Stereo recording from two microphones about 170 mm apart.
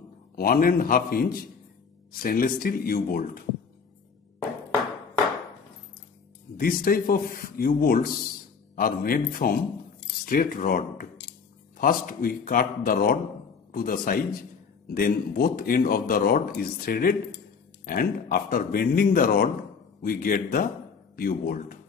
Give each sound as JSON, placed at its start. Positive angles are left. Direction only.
{"t": 0.4, "sound": "speech", "side_deg": 55}
{"t": 6.5, "sound": "speech", "side_deg": 55}
{"t": 11.8, "sound": "a man's voice", "side_deg": 55}